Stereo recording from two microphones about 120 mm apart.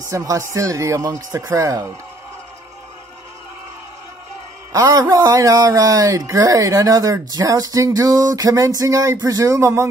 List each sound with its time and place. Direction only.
0.1 s speech: 25° right (ahead or behind)
4.7 s speech: 30° right (ahead or behind)